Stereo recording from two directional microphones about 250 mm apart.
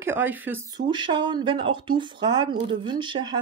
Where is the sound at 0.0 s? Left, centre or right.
Centre.